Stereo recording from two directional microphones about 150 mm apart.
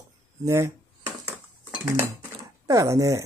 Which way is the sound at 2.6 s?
20° right (ahead or behind).